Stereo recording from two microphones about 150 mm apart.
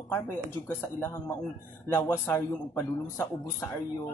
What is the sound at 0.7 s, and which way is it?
Speech, 15° left (ahead or behind).